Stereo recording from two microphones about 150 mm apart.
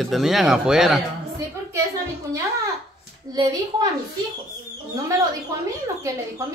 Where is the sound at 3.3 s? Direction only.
25° right (ahead or behind).